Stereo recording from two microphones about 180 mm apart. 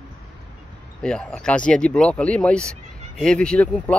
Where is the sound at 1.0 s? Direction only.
5° left (ahead or behind).